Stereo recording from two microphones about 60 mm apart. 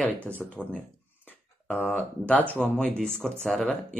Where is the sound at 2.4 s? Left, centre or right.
Right.